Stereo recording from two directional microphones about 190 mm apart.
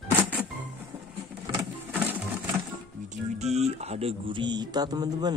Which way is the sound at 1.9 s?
10° right (ahead or behind).